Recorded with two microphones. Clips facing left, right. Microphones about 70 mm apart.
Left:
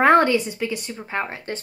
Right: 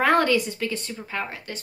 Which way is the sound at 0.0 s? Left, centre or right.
Left.